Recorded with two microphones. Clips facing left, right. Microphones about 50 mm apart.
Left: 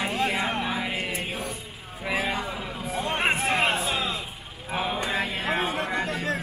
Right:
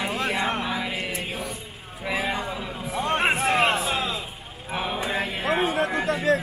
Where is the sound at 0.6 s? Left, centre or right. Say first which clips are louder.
Even; left.